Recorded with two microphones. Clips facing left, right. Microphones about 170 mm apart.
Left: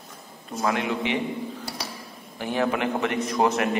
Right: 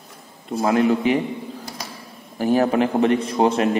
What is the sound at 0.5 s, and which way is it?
Speech, 35° right (ahead or behind).